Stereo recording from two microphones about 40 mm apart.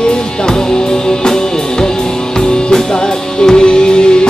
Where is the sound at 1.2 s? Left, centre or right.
Centre.